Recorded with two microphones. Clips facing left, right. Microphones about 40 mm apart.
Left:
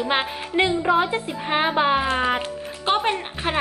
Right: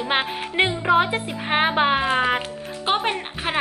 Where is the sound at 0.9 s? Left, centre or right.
Right; by 3.6 s centre.